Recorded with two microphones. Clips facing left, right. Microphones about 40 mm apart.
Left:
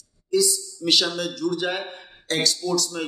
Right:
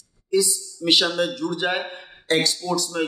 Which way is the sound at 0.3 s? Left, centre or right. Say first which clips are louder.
Even; right.